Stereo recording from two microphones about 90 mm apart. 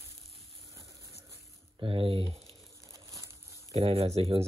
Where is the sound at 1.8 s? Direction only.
75° right (ahead or behind).